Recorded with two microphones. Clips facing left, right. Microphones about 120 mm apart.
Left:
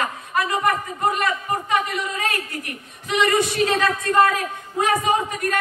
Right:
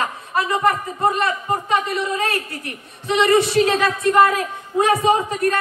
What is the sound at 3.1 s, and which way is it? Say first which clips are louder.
Speech: right 4 dB; 25° right (ahead or behind).